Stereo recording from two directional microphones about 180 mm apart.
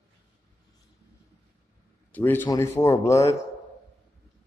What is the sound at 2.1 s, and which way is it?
Speech, 10° left (ahead or behind).